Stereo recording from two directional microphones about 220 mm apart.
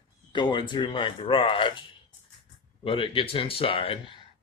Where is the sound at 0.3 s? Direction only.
20° left (ahead or behind).